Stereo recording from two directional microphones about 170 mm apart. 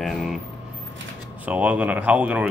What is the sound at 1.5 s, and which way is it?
Speech, 5° right (ahead or behind).